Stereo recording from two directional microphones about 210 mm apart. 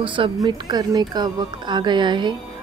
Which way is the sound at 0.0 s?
25° right (ahead or behind).